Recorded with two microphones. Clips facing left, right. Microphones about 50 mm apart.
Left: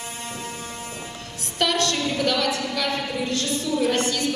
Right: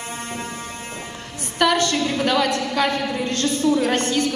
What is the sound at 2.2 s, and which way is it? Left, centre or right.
Speech, right.